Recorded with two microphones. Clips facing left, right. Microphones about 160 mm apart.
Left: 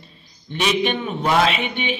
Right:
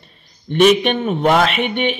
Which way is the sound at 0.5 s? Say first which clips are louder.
Right 8 dB; 55° right (ahead or behind).